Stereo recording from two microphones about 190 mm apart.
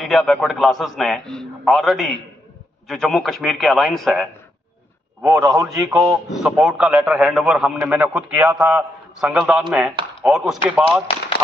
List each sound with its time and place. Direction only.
0.0 s a man's voice: centre (ahead or behind)
5.2 s a man's voice: 15° right (ahead or behind)
6.0 s a man's voice: centre (ahead or behind)